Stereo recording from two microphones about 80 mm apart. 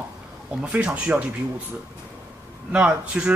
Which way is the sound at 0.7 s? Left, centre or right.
Centre.